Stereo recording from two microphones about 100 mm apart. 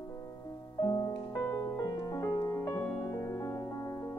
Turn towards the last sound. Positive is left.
turn(degrees=30)  # may be behind; listen again after turning